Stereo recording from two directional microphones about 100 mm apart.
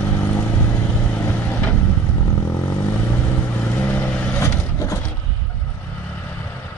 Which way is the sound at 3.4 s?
15° left (ahead or behind).